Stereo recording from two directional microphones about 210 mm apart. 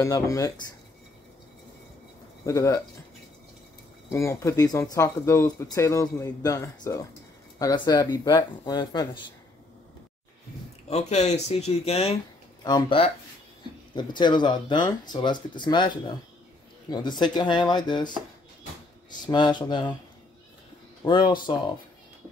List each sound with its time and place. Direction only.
0.0 s speech: 15° left (ahead or behind)
2.4 s speech: 15° left (ahead or behind)
4.1 s speech: 15° left (ahead or behind)
10.9 s speech: 30° left (ahead or behind)
19.2 s speech: 20° left (ahead or behind)
21.0 s speech: 20° left (ahead or behind)